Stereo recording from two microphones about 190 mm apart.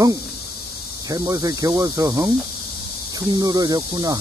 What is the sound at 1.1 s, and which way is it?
Speech, 20° right (ahead or behind).